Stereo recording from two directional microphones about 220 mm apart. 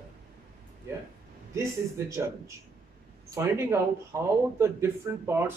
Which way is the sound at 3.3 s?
15° right (ahead or behind).